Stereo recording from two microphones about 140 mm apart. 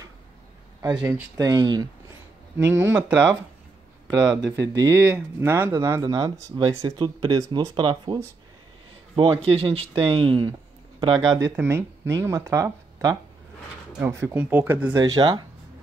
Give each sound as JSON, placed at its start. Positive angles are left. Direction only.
{"t": 1.0, "sound": "speech", "side_deg": -15}
{"t": 1.4, "sound": "speech", "side_deg": -30}
{"t": 2.5, "sound": "speech", "side_deg": -15}
{"t": 4.1, "sound": "speech", "side_deg": -30}
{"t": 13.9, "sound": "speech", "side_deg": -15}
{"t": 15.0, "sound": "speech", "side_deg": -30}